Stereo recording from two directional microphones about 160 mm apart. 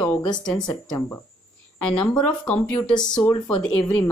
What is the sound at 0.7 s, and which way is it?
Speech, 25° left (ahead or behind).